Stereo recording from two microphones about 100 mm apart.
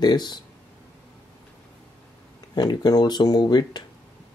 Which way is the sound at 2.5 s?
45° left (ahead or behind).